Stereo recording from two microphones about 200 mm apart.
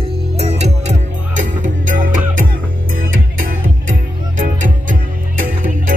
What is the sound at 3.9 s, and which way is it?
Music, 40° right (ahead or behind).